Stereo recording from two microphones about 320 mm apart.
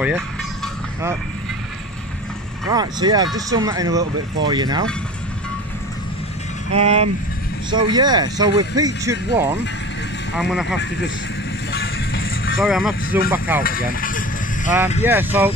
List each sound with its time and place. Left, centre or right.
2.7 s speech: centre
6.7 s speech: centre
11.7 s music: left
12.5 s speech: centre
13.7 s vehicle: left
15.0 s speech: centre